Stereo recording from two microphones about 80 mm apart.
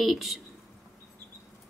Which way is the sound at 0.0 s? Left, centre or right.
Centre.